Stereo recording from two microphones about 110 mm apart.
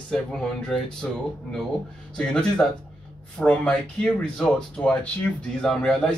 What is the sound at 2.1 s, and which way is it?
Speech, 10° left (ahead or behind).